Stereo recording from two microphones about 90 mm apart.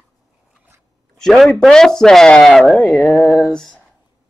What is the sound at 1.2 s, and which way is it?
Speech, 5° left (ahead or behind).